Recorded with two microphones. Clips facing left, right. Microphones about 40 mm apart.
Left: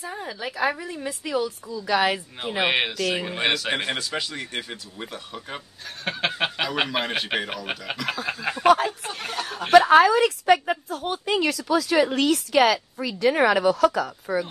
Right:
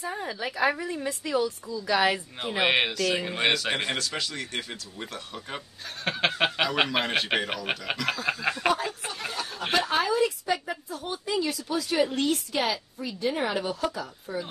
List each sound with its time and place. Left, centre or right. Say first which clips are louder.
0.0 s a man's voice: even; centre
9.3 s a sound: left 4 dB; left
9.7 s speech: left 11 dB; left
11.4 s a woman's voice: left 7 dB; left